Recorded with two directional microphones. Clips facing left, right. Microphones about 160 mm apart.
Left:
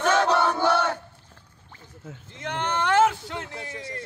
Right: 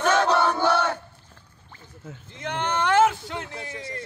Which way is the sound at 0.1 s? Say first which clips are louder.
Even; 10° left (ahead or behind).